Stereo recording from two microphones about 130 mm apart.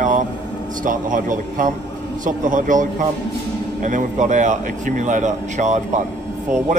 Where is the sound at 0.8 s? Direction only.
90° right.